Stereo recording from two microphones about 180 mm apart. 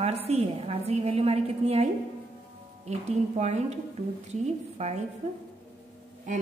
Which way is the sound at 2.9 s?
40° right (ahead or behind).